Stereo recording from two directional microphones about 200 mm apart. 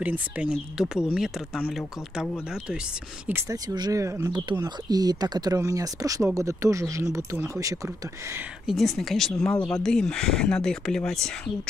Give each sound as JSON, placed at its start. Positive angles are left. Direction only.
{"t": 0.0, "sound": "speech", "side_deg": -5}
{"t": 3.3, "sound": "speech", "side_deg": -15}
{"t": 8.6, "sound": "speech", "side_deg": 0}